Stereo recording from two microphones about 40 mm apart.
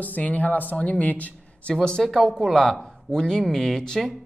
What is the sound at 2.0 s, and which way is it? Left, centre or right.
Speech, centre.